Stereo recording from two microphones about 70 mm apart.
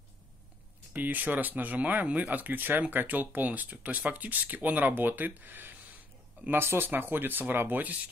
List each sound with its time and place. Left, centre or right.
0.9 s speech: right